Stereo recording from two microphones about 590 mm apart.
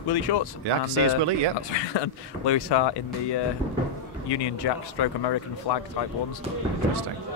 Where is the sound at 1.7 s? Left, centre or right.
Left.